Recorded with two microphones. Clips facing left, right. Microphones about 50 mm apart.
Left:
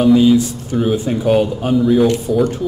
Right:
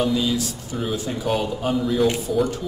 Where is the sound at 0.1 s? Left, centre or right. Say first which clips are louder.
Left 12 dB; left.